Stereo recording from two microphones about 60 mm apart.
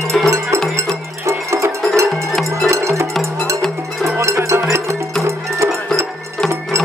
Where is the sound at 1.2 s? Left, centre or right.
Right.